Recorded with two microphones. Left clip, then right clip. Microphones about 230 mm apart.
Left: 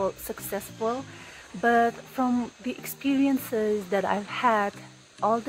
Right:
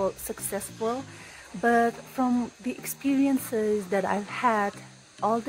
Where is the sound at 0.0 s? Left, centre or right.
Centre.